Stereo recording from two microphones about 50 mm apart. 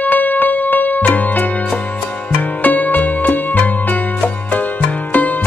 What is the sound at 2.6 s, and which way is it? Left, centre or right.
Music, left.